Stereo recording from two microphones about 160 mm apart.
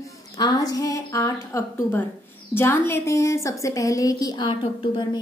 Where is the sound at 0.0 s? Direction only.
25° left (ahead or behind).